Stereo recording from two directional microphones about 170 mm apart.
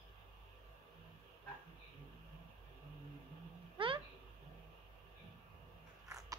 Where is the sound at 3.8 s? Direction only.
30° right (ahead or behind).